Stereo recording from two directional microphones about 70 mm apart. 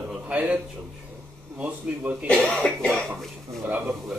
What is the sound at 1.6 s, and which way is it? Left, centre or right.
Speech, centre.